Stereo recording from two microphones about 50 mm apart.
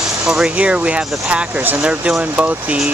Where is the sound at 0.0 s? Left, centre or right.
Centre.